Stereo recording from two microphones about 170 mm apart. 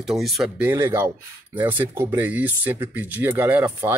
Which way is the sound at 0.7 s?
15° right (ahead or behind).